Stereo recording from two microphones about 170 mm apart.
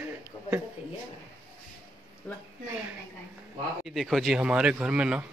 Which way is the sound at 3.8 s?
Centre (ahead or behind).